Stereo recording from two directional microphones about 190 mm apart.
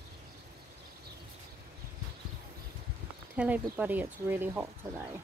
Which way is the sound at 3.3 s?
10° right (ahead or behind).